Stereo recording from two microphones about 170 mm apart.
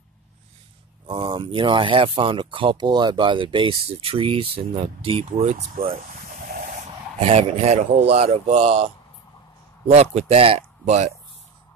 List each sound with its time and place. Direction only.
1.0 s speech: 30° right (ahead or behind)
5.8 s a sound: 55° right (ahead or behind)
7.2 s speech: 35° right (ahead or behind)
10.1 s speech: 35° right (ahead or behind)